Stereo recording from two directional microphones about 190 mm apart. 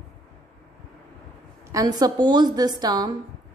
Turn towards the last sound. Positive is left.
turn(degrees=-20)  # may be behind; listen again after turning